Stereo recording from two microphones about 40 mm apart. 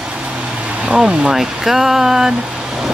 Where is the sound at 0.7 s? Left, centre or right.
Right.